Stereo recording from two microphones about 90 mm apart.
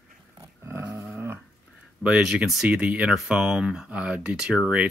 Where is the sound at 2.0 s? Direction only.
10° right (ahead or behind).